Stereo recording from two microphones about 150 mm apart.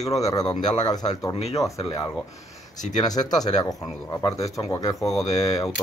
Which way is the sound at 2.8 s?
55° left (ahead or behind).